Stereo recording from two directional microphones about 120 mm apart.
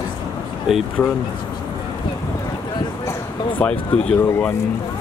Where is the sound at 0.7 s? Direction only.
Centre (ahead or behind).